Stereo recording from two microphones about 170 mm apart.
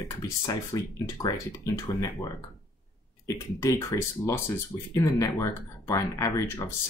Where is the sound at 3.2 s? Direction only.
20° left (ahead or behind).